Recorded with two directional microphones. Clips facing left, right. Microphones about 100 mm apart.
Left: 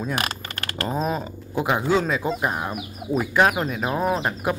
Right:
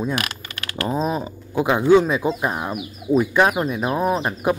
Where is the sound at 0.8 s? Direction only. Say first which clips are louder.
Right 3 dB; 10° right (ahead or behind).